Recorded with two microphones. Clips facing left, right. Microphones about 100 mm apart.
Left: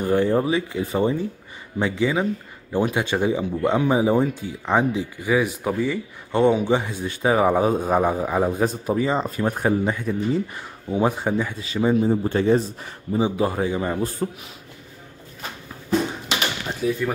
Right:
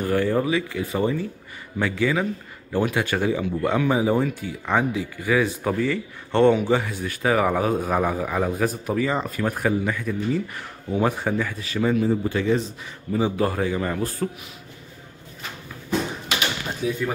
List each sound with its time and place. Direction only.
0.0 s speech: 20° left (ahead or behind)
13.1 s speech: 20° left (ahead or behind)
16.8 s speech: 5° right (ahead or behind)